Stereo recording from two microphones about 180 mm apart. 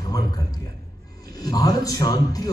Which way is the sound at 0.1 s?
20° left (ahead or behind).